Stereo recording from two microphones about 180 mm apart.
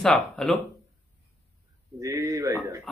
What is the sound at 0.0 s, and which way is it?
Speech, 5° left (ahead or behind).